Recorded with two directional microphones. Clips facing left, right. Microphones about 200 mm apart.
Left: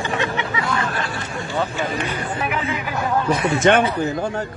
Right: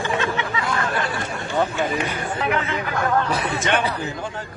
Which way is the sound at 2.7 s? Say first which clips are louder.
Even; 5° left (ahead or behind).